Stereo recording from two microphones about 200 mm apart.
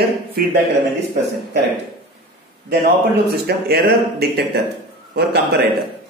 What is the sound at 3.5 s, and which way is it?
A man's voice, 50° right (ahead or behind).